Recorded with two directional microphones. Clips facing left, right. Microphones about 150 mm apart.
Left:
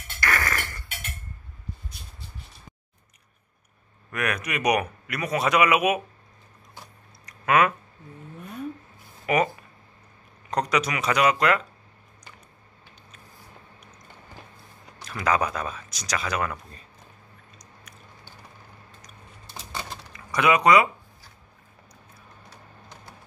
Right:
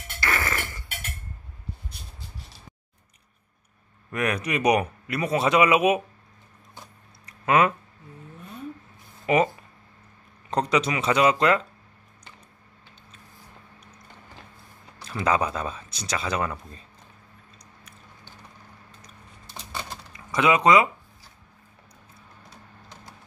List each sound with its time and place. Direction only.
0.2 s a sound: 20° right (ahead or behind)
4.1 s speech: 30° right (ahead or behind)
7.2 s a sound: 25° right (ahead or behind)
9.2 s speech: 25° right (ahead or behind)
10.5 s speech: 25° right (ahead or behind)
15.0 s speech: 25° right (ahead or behind)
19.4 s typewriter: 10° left (ahead or behind)
20.1 s speech: 20° right (ahead or behind)